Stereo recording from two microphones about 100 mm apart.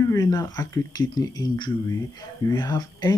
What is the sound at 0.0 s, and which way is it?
Speech, 35° left (ahead or behind).